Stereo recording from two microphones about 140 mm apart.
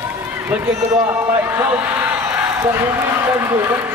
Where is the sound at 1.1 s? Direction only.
15° right (ahead or behind).